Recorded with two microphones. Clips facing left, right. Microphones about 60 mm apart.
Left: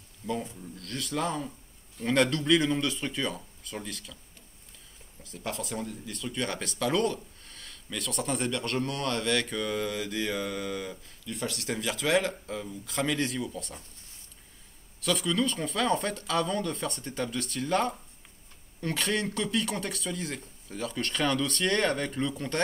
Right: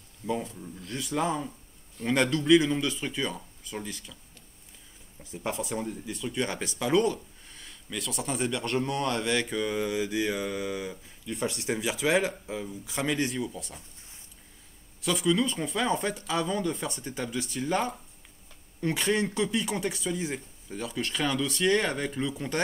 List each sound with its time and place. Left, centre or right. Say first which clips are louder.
0.4 s speech: right 1 dB; centre
5.2 s speech: right 3 dB; centre
15.0 s speech: right 2 dB; centre
20.7 s speech: even; centre